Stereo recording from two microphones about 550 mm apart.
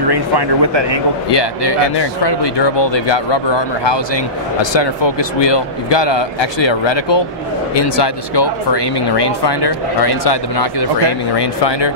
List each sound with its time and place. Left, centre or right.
0.1 s speech: right
1.3 s a man's voice: left